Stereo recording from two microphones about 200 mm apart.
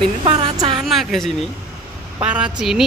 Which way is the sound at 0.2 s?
25° right (ahead or behind).